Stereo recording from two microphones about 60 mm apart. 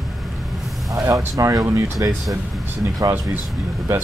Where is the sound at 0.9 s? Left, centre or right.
Right.